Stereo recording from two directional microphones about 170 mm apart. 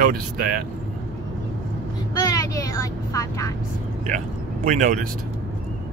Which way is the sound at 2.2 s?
20° left (ahead or behind).